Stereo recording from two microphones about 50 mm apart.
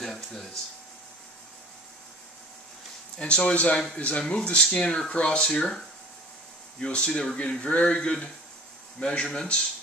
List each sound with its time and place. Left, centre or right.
0.0 s a sound: centre
3.2 s speech: left
6.8 s speech: centre